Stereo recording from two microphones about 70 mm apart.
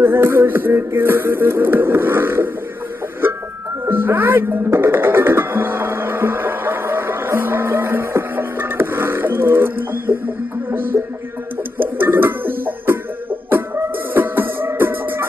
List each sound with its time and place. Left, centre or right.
0.0 s music: right
3.8 s music: right
12.0 s music: right
14.1 s music: right